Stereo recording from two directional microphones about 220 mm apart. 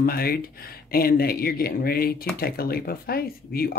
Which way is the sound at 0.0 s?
45° left (ahead or behind).